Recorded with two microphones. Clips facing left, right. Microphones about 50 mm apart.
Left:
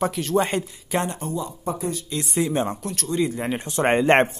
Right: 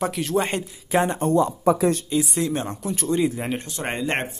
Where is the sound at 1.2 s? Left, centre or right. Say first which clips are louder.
Right 9 dB; right.